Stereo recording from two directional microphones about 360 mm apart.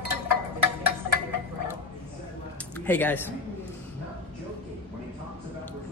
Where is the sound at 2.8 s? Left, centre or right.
Centre.